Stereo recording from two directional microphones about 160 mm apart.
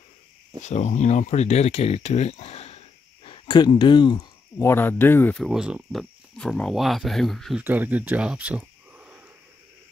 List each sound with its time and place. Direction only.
0.6 s speech: 45° left (ahead or behind); by 4.3 s 30° left (ahead or behind)
4.6 s speech: 15° left (ahead or behind)
5.4 s speech: 5° right (ahead or behind)
7.6 s speech: 10° right (ahead or behind)